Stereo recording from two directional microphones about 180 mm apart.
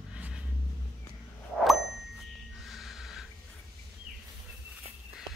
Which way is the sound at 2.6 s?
Centre (ahead or behind).